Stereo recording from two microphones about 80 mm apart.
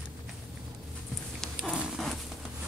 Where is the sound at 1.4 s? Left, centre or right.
Centre.